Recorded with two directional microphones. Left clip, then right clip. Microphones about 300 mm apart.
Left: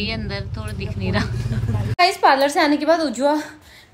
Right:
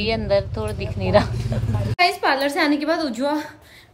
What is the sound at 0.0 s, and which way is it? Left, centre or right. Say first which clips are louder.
A woman's voice: right 7 dB; centre.